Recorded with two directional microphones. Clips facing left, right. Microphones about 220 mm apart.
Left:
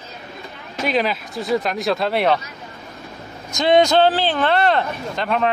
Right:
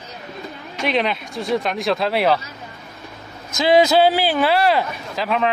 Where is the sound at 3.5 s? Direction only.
5° right (ahead or behind).